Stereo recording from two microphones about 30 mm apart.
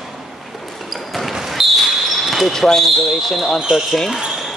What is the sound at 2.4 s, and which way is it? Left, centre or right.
Speech, centre.